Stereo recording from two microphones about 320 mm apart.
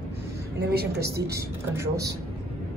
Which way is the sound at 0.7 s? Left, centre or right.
Right.